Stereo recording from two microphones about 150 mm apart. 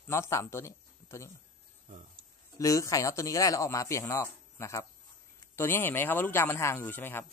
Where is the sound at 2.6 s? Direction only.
20° left (ahead or behind).